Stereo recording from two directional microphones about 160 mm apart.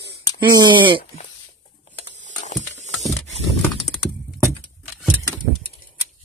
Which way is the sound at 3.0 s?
Centre (ahead or behind).